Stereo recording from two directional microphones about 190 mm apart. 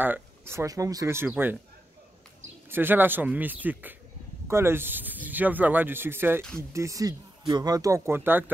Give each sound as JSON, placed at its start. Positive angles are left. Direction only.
{"t": 0.0, "sound": "speech", "side_deg": -10}
{"t": 2.7, "sound": "speech", "side_deg": -10}